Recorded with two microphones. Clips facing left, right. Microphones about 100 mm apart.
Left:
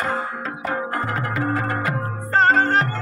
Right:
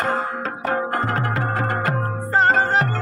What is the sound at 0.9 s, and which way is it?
Music, 30° right (ahead or behind).